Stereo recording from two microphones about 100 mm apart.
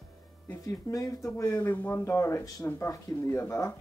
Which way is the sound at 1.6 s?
20° left (ahead or behind).